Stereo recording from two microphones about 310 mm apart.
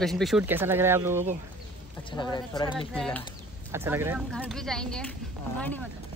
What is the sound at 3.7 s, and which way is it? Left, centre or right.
Speech, centre.